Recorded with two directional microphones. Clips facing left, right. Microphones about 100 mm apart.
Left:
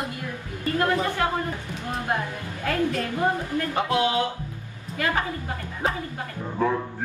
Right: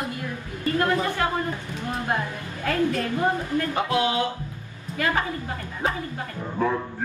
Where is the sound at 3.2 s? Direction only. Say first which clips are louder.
Even; 30° left (ahead or behind).